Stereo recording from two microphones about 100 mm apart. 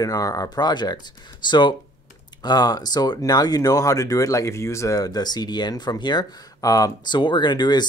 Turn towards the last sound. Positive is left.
turn(degrees=45)  # may be behind; listen again after turning